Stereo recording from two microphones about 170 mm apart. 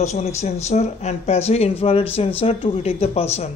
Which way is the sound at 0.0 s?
40° left (ahead or behind).